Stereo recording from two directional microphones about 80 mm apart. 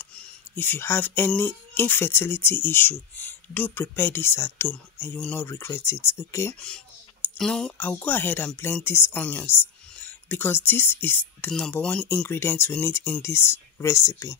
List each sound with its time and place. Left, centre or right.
0.0 s a sound: centre
0.6 s speech: left
7.3 s speech: centre
7.7 s speech: left
11.8 s speech: centre
12.3 s speech: left